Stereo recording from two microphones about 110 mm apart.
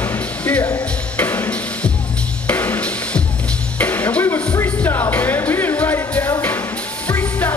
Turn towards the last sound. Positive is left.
turn(degrees=15)  # may be behind; listen again after turning